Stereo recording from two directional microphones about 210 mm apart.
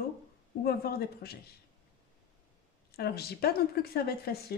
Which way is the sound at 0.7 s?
50° left (ahead or behind).